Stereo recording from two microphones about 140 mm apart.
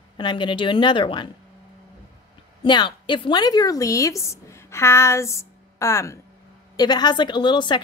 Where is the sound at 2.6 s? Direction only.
35° left (ahead or behind).